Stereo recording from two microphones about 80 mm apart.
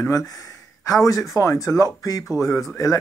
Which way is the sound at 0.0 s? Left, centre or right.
Left.